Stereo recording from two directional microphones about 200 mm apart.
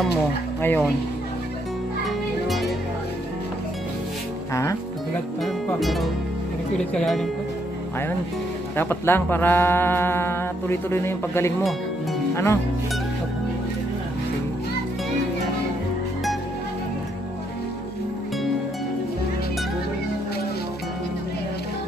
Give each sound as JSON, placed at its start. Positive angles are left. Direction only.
{"t": 0.6, "sound": "speech", "side_deg": 10}
{"t": 2.0, "sound": "children playing", "side_deg": 0}
{"t": 5.4, "sound": "speech", "side_deg": 0}
{"t": 8.7, "sound": "speech", "side_deg": 10}